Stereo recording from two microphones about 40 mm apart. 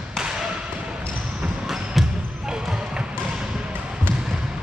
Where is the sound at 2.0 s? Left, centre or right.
Centre.